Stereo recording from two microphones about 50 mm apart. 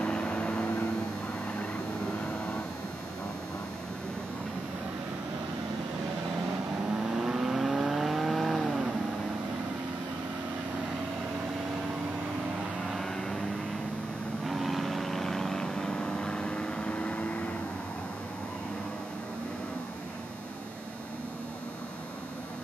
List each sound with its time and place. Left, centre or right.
0.0 s vehicle: centre
6.9 s vehicle: centre
12.9 s vehicle: centre
14.4 s vehicle: centre; by 17.4 s left